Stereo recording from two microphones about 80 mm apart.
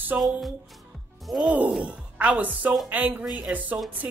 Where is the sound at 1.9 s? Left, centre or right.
Centre.